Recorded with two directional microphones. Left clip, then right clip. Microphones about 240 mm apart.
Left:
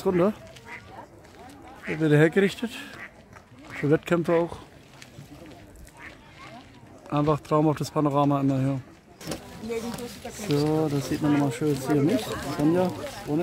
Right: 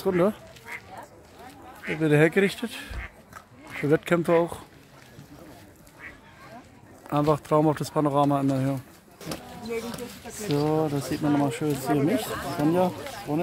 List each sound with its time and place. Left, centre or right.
0.0 s speech: centre
1.9 s speech: centre
7.1 s speech: centre
10.3 s speech: centre